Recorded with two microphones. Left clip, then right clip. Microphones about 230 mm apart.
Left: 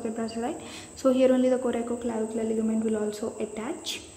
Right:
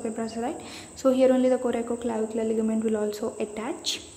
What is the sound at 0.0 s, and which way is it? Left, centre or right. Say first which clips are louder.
A woman's voice: right 1 dB; centre.